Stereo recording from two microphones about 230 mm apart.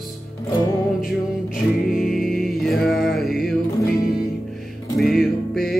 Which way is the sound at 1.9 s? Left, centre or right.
Centre.